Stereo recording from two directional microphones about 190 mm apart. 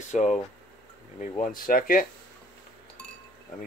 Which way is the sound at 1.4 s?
45° left (ahead or behind).